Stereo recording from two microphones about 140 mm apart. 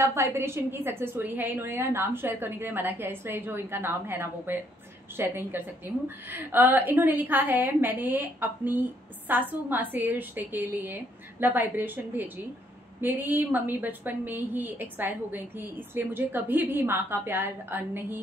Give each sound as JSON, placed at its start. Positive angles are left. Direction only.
{"t": 0.0, "sound": "a woman's voice", "side_deg": -20}